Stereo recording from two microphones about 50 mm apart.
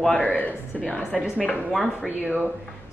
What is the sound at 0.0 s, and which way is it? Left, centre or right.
Speech, centre.